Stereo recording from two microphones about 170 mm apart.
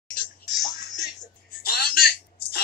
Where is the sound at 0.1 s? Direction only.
55° left (ahead or behind).